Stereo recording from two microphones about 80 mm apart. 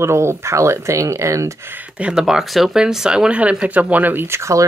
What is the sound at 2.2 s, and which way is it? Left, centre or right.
Speech, centre.